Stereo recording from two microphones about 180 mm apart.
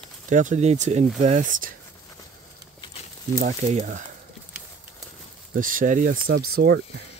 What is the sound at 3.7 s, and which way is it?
Speech, 40° right (ahead or behind).